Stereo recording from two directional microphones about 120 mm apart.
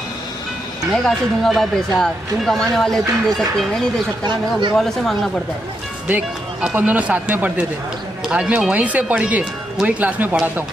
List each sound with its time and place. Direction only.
0.9 s speech: centre (ahead or behind)
4.3 s speech: 40° right (ahead or behind)
4.7 s speech: centre (ahead or behind)
6.0 s speech: 10° right (ahead or behind)